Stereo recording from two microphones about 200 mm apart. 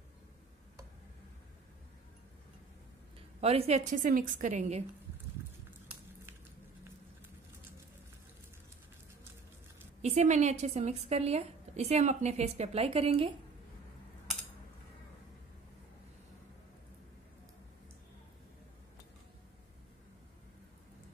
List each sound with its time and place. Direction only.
3.3 s a woman's voice: 30° right (ahead or behind)
5.7 s a sound: 10° right (ahead or behind)
10.0 s a woman's voice: 35° right (ahead or behind)